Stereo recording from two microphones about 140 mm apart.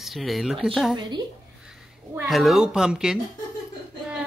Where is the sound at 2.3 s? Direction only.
Centre (ahead or behind).